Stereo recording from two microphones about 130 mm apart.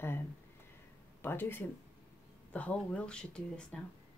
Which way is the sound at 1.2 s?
15° left (ahead or behind).